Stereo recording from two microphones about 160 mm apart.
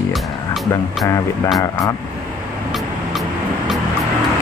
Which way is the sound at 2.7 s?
Centre (ahead or behind).